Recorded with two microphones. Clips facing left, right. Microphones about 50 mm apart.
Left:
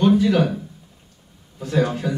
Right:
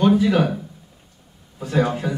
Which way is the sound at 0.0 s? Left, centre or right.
Centre.